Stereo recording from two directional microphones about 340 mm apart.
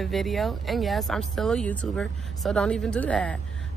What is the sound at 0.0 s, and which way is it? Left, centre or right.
Speech, centre.